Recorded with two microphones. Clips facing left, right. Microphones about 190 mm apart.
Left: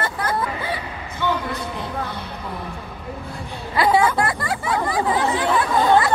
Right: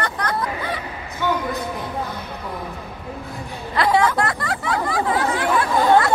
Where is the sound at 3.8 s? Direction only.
5° left (ahead or behind).